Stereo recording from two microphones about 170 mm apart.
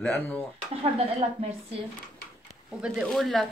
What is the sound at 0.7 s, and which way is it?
Speech, 35° right (ahead or behind).